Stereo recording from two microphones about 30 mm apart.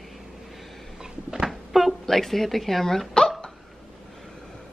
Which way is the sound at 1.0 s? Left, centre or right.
Right.